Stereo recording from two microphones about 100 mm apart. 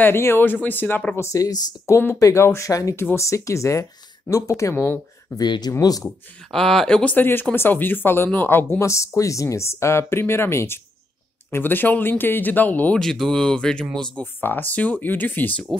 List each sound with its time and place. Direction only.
0.0 s speech: 25° left (ahead or behind)
5.3 s speech: 45° left (ahead or behind)
6.0 s speech: 5° left (ahead or behind)
13.0 s speech: 5° left (ahead or behind)
14.2 s speech: 20° left (ahead or behind)